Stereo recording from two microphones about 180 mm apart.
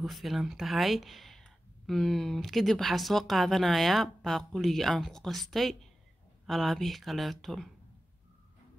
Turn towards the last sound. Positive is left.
turn(degrees=0)  # may be behind; listen again after turning